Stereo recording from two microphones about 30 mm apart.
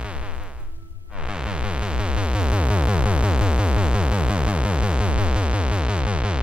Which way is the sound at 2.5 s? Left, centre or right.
Right.